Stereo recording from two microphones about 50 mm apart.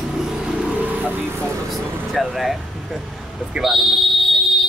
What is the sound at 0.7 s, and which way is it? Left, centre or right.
Vehicle, right.